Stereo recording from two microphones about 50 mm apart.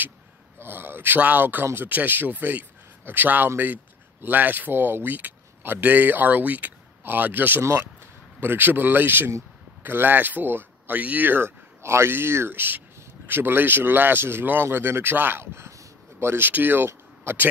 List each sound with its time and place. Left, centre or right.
0.6 s speech: right
11.2 s speech: right
15.4 s speech: right
16.2 s speech: right